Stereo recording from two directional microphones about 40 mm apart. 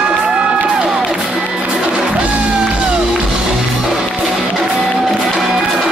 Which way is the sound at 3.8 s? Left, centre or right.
Centre.